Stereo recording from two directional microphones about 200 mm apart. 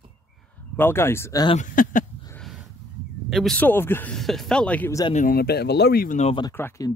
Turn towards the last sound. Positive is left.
turn(degrees=10)  # may be behind; listen again after turning